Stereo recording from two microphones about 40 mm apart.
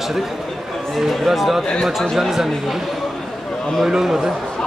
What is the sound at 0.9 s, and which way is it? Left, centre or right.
Speech, centre.